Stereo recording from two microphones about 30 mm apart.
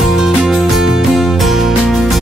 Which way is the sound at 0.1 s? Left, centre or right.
Centre.